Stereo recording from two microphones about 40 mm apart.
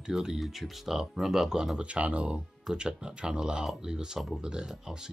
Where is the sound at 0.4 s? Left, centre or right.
Centre.